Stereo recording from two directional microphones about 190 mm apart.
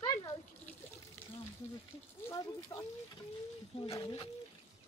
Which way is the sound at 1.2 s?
10° left (ahead or behind).